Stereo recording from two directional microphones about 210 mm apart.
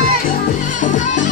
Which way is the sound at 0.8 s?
35° left (ahead or behind).